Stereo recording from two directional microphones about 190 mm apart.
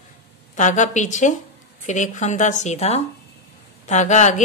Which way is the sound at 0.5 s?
40° left (ahead or behind).